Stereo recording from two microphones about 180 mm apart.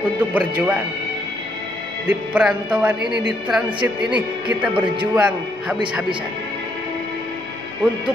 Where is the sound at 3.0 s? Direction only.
70° right (ahead or behind).